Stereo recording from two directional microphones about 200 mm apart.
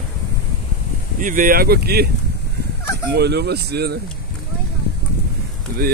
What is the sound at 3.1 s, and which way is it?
Speech, 55° right (ahead or behind).